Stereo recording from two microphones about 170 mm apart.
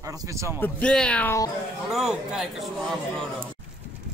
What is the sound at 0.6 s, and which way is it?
Speech, 5° left (ahead or behind).